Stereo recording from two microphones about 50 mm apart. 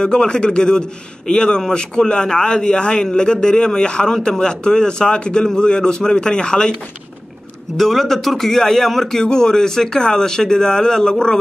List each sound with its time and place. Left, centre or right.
0.0 s a man's voice: centre
7.7 s a man's voice: centre